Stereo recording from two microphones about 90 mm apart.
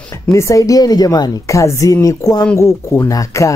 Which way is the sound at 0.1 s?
35° left (ahead or behind).